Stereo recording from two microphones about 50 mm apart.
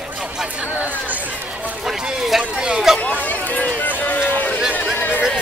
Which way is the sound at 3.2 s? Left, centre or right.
Left.